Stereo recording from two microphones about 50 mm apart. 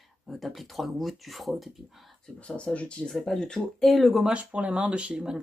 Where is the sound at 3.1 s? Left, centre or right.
Centre.